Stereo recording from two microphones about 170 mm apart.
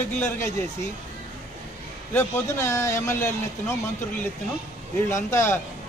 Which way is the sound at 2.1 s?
15° left (ahead or behind).